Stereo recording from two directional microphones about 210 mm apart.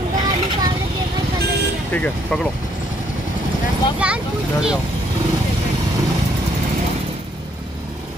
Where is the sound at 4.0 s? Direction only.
5° right (ahead or behind).